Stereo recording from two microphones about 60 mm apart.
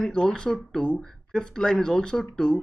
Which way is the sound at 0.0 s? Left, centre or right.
Centre.